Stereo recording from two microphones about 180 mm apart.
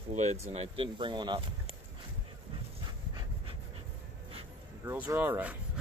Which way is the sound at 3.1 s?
30° right (ahead or behind).